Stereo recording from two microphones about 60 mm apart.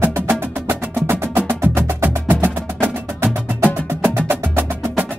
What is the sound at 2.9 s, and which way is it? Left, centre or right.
Wood block, right.